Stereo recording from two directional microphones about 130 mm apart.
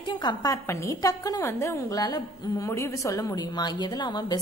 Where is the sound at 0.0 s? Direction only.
35° left (ahead or behind).